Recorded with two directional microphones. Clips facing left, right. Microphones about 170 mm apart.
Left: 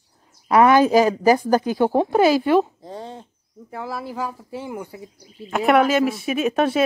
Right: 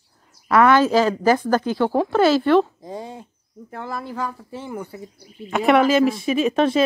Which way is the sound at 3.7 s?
5° left (ahead or behind).